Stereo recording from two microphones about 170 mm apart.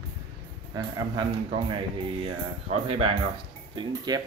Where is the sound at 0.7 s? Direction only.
25° right (ahead or behind).